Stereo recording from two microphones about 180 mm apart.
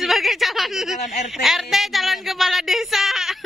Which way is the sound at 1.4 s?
Centre (ahead or behind).